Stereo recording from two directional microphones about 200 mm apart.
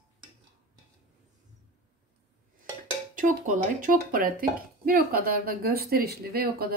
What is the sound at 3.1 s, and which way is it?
Speech, 40° right (ahead or behind).